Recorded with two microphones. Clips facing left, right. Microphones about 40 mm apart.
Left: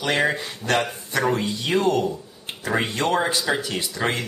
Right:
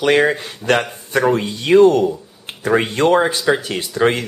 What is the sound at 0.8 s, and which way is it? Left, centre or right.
Speech, right.